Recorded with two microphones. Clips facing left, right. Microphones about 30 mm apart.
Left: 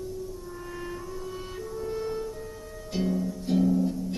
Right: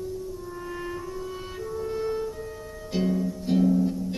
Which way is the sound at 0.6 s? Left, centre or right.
Centre.